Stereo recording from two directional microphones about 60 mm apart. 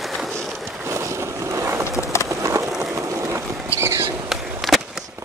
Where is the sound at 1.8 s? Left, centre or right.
Left.